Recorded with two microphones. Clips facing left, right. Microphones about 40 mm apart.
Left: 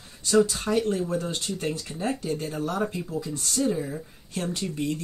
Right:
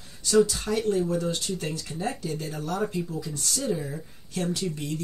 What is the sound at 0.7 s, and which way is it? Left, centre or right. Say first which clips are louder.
Speech: left 3 dB; centre.